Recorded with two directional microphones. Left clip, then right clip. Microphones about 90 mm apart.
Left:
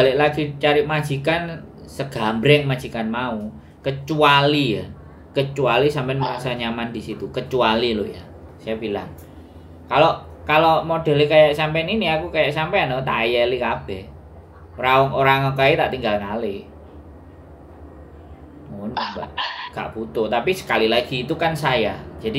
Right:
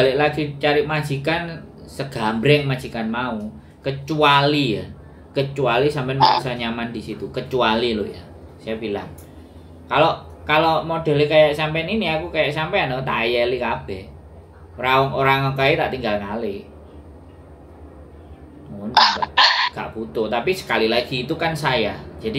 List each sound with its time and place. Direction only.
0.0 s speech: centre (ahead or behind)
6.1 s speech: 45° right (ahead or behind)
6.4 s speech: centre (ahead or behind)
18.9 s beatboxing: 45° right (ahead or behind)
19.7 s speech: 5° left (ahead or behind)